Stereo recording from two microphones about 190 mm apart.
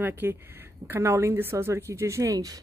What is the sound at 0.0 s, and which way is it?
Speech, 10° right (ahead or behind).